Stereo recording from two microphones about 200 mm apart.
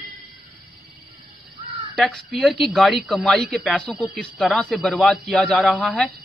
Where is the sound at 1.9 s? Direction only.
Centre (ahead or behind).